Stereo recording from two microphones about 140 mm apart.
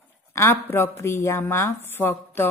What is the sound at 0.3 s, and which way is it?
Speech, 20° left (ahead or behind).